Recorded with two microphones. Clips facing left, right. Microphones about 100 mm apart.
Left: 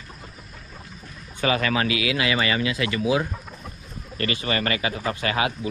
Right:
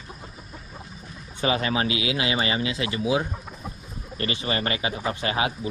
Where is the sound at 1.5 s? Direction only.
25° right (ahead or behind).